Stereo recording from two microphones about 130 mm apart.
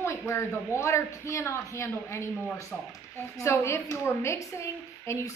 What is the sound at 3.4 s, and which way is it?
A woman's voice, 20° left (ahead or behind).